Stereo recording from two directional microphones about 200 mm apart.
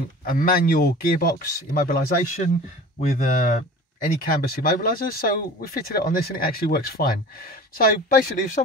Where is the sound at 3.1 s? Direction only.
40° left (ahead or behind).